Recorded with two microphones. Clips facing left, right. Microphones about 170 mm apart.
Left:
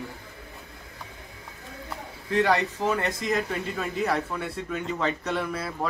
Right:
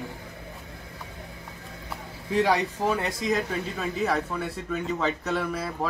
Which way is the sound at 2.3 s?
5° right (ahead or behind).